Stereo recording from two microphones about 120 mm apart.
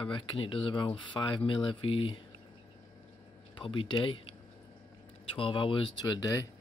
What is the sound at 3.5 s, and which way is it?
Speech, 45° left (ahead or behind).